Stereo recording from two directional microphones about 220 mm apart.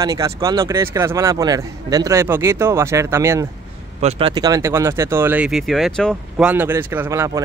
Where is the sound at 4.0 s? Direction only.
25° right (ahead or behind).